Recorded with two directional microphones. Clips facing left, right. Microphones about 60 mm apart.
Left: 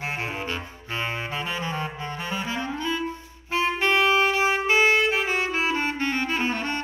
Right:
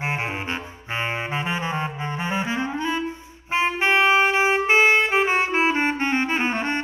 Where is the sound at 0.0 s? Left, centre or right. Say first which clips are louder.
Right 3 dB; right.